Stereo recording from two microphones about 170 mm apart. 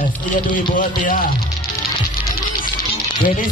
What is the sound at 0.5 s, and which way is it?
Speech, 50° left (ahead or behind).